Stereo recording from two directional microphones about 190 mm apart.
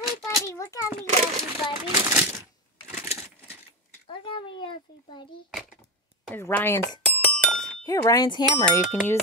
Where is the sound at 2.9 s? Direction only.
15° right (ahead or behind).